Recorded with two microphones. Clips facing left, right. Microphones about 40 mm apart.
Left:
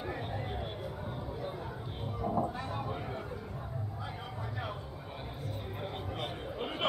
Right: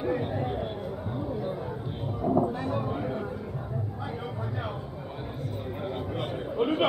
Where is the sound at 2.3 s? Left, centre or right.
Centre.